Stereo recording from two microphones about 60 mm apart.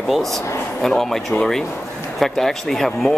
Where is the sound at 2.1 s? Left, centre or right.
Centre.